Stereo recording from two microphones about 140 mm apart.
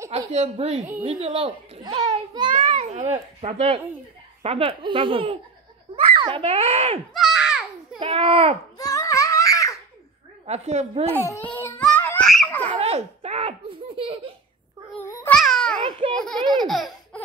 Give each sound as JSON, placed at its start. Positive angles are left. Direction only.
{"t": 0.3, "sound": "a woman's voice", "side_deg": -55}
{"t": 1.0, "sound": "a child's voice", "side_deg": -40}
{"t": 2.6, "sound": "a child's voice", "side_deg": -50}
{"t": 6.4, "sound": "a woman's voice", "side_deg": -45}
{"t": 7.2, "sound": "a sound", "side_deg": 0}
{"t": 8.0, "sound": "a child's voice", "side_deg": -40}
{"t": 8.7, "sound": "babbling", "side_deg": 25}
{"t": 10.4, "sound": "a woman's voice", "side_deg": -50}
{"t": 11.1, "sound": "a child's voice", "side_deg": 15}
{"t": 11.8, "sound": "a sound", "side_deg": 15}
{"t": 12.4, "sound": "baby laughter", "side_deg": 15}
{"t": 12.7, "sound": "giggle", "side_deg": -45}
{"t": 15.2, "sound": "babbling", "side_deg": 5}
{"t": 16.2, "sound": "baby laughter", "side_deg": 5}